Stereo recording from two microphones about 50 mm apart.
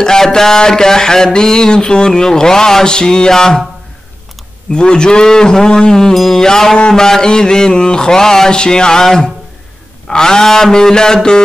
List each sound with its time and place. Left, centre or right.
0.0 s a man's voice: centre
4.7 s a man's voice: centre